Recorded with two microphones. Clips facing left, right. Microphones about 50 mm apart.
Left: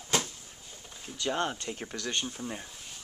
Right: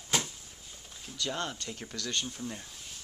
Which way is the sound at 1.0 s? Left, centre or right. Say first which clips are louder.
Left 4 dB; left.